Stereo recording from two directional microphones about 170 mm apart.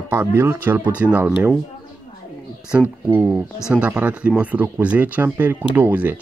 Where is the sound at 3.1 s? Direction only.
5° right (ahead or behind).